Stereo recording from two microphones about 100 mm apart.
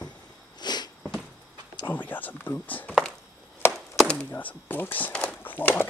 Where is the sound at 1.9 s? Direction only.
15° left (ahead or behind).